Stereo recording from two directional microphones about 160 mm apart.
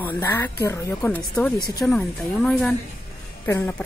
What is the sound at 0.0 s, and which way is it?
Speech, 10° left (ahead or behind).